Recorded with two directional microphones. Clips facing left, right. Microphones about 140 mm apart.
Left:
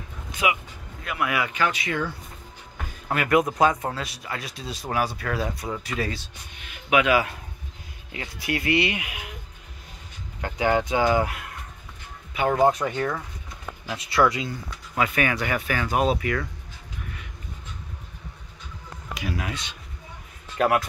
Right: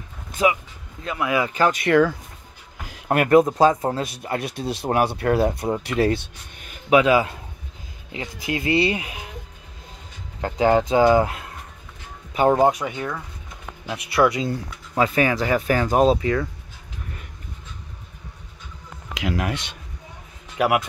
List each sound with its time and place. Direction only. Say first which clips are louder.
0.4 s speech: right 5 dB; 35° right (ahead or behind)
1.0 s speech: right 4 dB; 25° right (ahead or behind)
1.5 s speech: right 5 dB; 35° right (ahead or behind)
1.8 s speech: right 11 dB; 70° right (ahead or behind)
3.3 s speech: right 5 dB; 30° right (ahead or behind)
4.0 s speech: right 7 dB; 50° right (ahead or behind)
6.6 s speech: right 5 dB; 35° right (ahead or behind)
10.4 s speech: right 5 dB; 30° right (ahead or behind)
12.7 s speech: left 2 dB; 10° right (ahead or behind)
13.8 s speech: right 2 dB; 25° right (ahead or behind)
19.2 s speech: right 6 dB; 65° right (ahead or behind)
20.5 s speech: right 1 dB; 15° right (ahead or behind)